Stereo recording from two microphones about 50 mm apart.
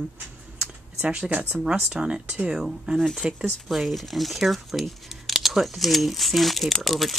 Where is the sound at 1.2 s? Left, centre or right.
Right.